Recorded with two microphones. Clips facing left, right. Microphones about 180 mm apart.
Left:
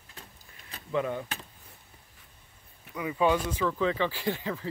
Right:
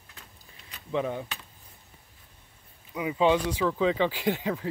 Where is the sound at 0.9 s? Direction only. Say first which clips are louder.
Right 1 dB; 20° right (ahead or behind).